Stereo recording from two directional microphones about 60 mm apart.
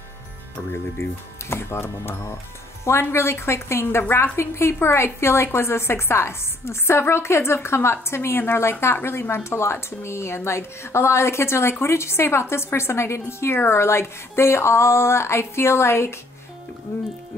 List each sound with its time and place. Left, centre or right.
1.5 s a woman's voice: left